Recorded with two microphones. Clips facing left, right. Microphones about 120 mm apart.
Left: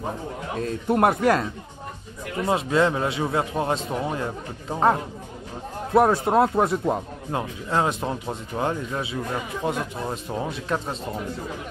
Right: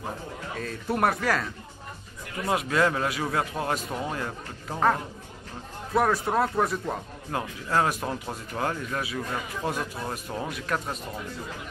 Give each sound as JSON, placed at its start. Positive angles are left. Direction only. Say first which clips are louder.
{"t": 0.6, "sound": "speech", "louder": "left 5 dB", "side_deg": 25}